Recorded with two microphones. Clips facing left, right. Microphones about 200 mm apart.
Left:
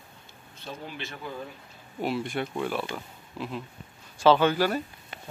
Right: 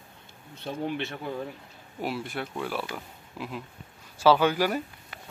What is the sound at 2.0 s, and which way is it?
Speech, 5° right (ahead or behind).